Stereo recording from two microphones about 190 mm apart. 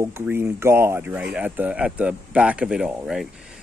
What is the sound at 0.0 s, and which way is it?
Speech, 15° right (ahead or behind).